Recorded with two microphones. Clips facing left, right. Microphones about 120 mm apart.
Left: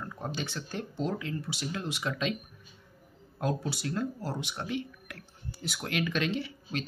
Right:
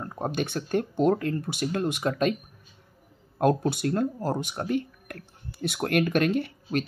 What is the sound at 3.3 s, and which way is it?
Speech, 60° right (ahead or behind).